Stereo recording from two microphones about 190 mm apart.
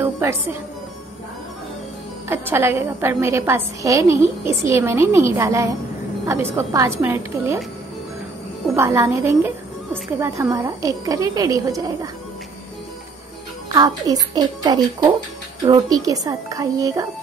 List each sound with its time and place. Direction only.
0.0 s a woman's voice: 10° right (ahead or behind)
2.2 s a woman's voice: 10° right (ahead or behind)
8.7 s a woman's voice: 15° right (ahead or behind)
13.7 s a child's voice: 20° right (ahead or behind)